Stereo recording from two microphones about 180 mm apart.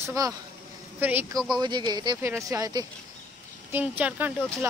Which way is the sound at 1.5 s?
25° right (ahead or behind).